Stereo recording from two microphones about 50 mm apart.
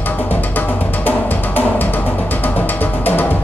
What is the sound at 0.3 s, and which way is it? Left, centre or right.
Music, left.